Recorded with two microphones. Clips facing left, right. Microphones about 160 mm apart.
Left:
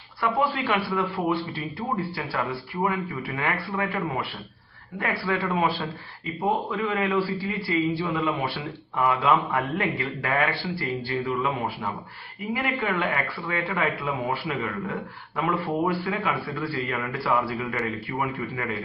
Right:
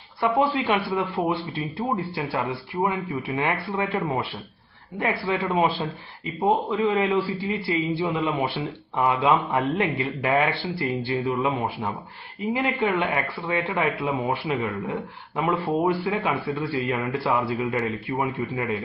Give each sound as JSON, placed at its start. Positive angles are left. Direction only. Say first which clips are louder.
{"t": 0.2, "sound": "a man's voice", "louder": "right 3 dB", "side_deg": -20}